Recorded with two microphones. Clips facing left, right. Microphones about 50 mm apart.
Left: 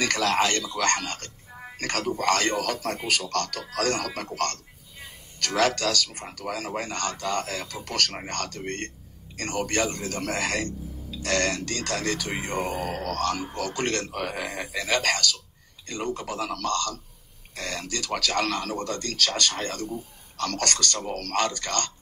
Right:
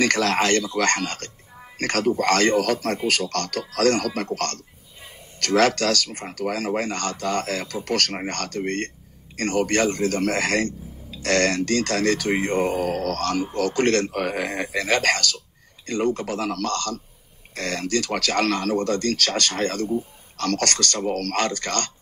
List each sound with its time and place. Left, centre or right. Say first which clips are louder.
0.0 s speech: right 3 dB; right
5.5 s speech: right 5 dB; right
12.6 s mantra: right 6 dB; right
13.2 s speech: right 4 dB; right
15.0 s speech: right 3 dB; right